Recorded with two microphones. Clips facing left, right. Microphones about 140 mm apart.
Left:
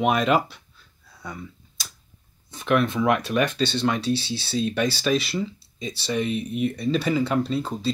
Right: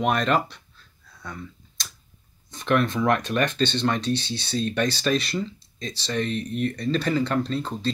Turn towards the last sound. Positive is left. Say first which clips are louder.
# left 1 dB
turn(degrees=5)  # may be behind; listen again after turning